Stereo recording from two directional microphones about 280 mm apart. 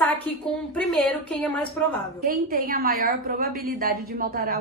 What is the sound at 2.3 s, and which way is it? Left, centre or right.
A woman's voice, right.